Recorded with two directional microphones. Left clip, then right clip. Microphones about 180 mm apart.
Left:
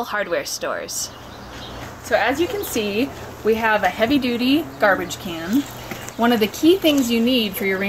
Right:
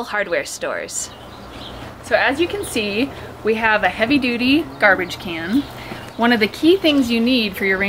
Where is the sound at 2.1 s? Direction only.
10° left (ahead or behind).